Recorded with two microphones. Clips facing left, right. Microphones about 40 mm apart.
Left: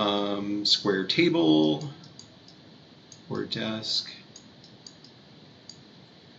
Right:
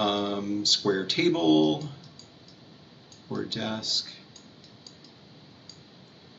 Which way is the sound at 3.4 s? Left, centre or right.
Centre.